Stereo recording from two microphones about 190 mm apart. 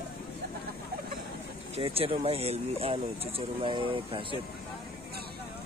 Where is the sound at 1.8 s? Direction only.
30° right (ahead or behind).